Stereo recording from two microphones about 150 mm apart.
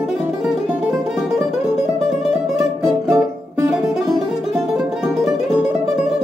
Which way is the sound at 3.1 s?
20° right (ahead or behind).